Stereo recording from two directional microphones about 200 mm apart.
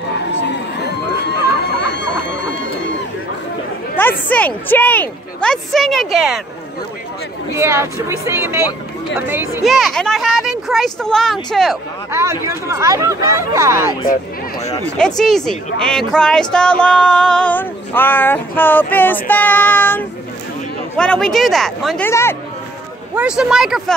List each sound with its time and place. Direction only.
0.4 s crowd: 60° left (ahead or behind)
1.9 s music: 60° left (ahead or behind)
4.3 s speech: 10° left (ahead or behind)
7.5 s speech: 15° right (ahead or behind)
9.7 s speech: centre (ahead or behind)
12.1 s speech: 15° right (ahead or behind)
15.0 s speech: 5° left (ahead or behind)
23.1 s speech: 5° right (ahead or behind)